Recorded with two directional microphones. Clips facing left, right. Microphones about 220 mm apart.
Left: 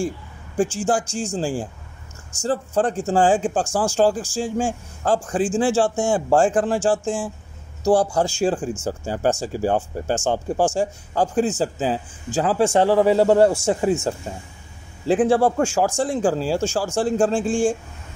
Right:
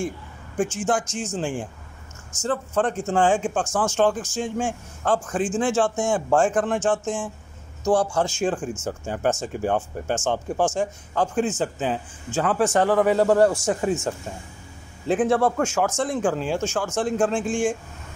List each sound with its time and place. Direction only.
0.6 s a man's voice: 30° left (ahead or behind)
15.0 s speech: 30° left (ahead or behind)